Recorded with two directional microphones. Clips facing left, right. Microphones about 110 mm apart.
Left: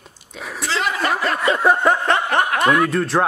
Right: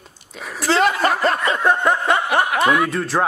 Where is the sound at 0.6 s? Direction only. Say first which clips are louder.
Right 6 dB; 50° right (ahead or behind).